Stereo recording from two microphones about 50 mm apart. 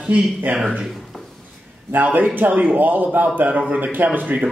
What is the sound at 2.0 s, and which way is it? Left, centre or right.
A man's voice, right.